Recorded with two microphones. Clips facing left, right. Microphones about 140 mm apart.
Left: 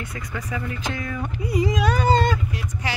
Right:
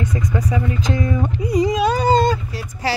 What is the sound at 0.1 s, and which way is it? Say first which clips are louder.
Speech: right 9 dB; 20° right (ahead or behind).